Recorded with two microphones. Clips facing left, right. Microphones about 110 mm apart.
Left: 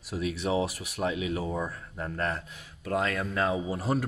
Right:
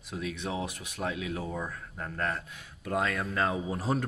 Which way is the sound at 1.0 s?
15° left (ahead or behind).